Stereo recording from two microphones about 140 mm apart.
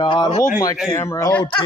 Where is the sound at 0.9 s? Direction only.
20° left (ahead or behind).